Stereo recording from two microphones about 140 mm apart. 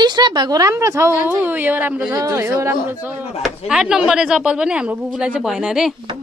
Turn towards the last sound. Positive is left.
turn(degrees=-5)  # may be behind; listen again after turning